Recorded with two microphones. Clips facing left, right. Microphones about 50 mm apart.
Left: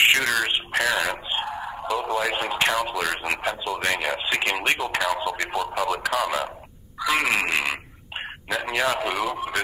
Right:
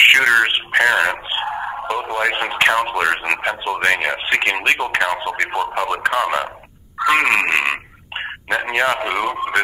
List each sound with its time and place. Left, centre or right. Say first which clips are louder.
0.0 s speech: right 8 dB; right
7.0 s a sound: right 7 dB; right
8.5 s speech: right 5 dB; right